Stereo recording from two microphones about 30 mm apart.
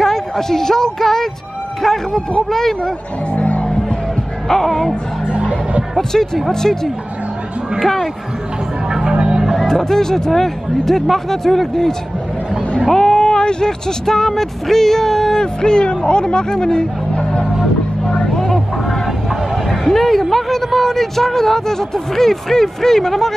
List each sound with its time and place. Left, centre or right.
0.0 s a woman's voice: centre
3.3 s music: left
4.5 s a woman's voice: centre
5.3 s music: right
5.9 s a woman's voice: centre
8.9 s music: right
9.6 s a woman's voice: centre
12.9 s speech: left
17.1 s music: left
19.5 s a woman's voice: centre